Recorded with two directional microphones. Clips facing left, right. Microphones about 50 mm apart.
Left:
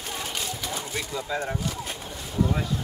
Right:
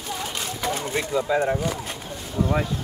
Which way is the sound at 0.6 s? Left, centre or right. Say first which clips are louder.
Right 6 dB; right.